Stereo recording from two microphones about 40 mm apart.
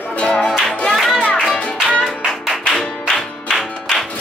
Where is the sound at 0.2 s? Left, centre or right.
Left.